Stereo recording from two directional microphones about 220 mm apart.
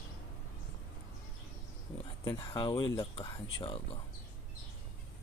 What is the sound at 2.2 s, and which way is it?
Speech, 20° left (ahead or behind).